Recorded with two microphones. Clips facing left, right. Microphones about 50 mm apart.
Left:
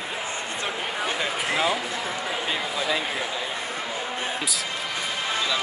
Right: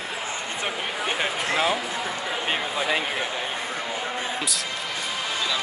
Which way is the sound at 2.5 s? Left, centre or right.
Right.